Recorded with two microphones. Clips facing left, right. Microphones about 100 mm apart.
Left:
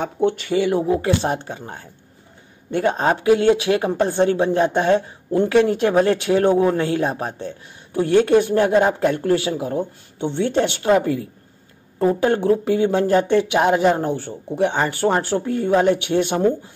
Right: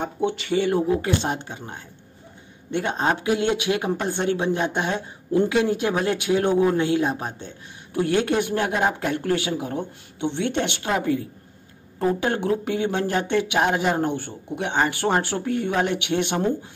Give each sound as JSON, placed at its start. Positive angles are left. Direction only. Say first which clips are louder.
{"t": 0.2, "sound": "speech", "louder": "left 5 dB", "side_deg": 50}
{"t": 0.8, "sound": "speech", "louder": "left 3 dB", "side_deg": 35}